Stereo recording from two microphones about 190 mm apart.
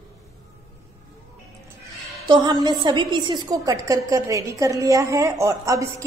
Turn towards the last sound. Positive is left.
turn(degrees=-15)  # may be behind; listen again after turning